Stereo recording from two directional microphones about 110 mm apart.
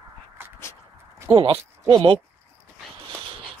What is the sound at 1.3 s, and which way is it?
Speech, 55° right (ahead or behind).